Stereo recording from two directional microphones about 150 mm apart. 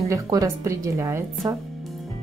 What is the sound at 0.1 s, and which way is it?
Speech, 20° right (ahead or behind).